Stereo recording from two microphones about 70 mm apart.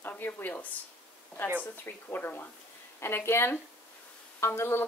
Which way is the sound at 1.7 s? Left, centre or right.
Left.